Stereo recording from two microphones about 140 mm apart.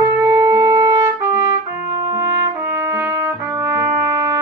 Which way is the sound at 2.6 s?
20° right (ahead or behind).